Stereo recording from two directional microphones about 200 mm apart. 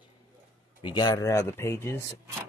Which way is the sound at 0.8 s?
20° left (ahead or behind).